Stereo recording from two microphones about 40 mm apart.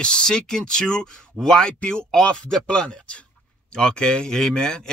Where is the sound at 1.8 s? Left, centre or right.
Left.